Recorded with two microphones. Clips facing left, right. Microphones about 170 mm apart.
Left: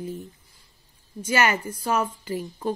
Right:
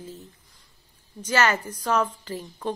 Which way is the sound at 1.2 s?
10° left (ahead or behind).